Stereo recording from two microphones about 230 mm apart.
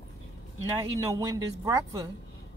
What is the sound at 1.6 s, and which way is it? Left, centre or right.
Speech, centre.